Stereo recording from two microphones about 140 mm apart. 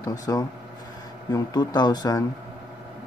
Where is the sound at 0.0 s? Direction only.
25° left (ahead or behind).